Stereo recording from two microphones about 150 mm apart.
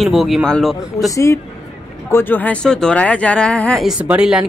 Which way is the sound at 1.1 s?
20° left (ahead or behind).